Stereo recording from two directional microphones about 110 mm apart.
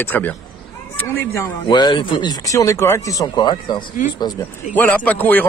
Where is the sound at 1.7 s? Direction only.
45° left (ahead or behind).